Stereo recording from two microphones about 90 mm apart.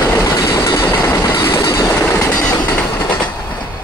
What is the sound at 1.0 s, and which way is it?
Train, 25° left (ahead or behind).